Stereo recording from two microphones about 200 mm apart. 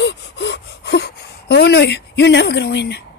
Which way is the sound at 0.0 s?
60° left (ahead or behind).